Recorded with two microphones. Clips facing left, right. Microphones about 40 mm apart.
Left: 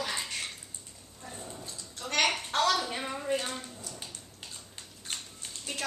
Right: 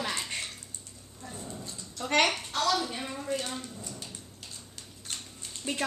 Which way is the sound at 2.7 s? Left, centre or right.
Left.